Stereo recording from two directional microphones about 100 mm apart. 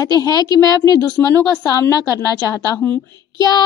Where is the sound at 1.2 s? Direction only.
30° left (ahead or behind).